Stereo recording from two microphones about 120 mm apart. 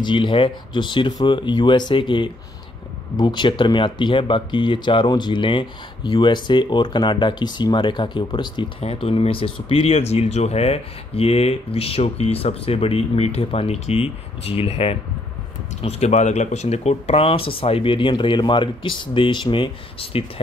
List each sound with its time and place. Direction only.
0.0 s speech: 40° left (ahead or behind)